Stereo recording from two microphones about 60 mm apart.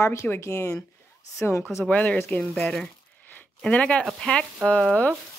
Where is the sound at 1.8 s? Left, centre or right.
Left.